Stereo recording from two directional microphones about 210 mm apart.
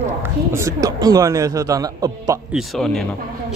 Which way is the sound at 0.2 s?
10° right (ahead or behind).